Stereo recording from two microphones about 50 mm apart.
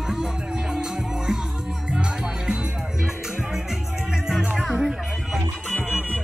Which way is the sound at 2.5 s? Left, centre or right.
Centre.